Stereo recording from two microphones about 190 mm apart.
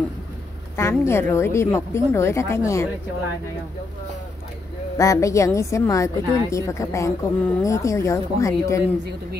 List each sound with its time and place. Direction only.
0.7 s a woman's voice: 15° left (ahead or behind)
4.9 s a woman's voice: 15° left (ahead or behind)